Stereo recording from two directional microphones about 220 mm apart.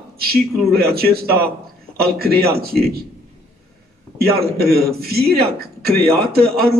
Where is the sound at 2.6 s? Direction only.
45° right (ahead or behind).